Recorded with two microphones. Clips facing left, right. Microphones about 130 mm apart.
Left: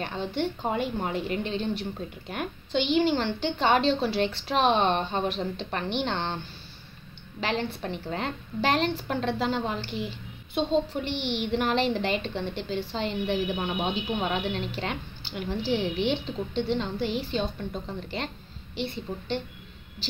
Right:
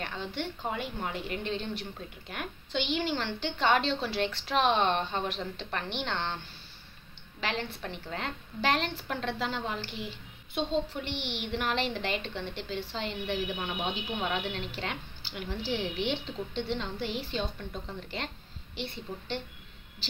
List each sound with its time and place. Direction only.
0.0 s a woman's voice: 30° left (ahead or behind)